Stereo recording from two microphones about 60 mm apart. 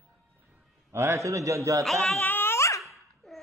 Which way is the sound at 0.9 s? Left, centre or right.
Right.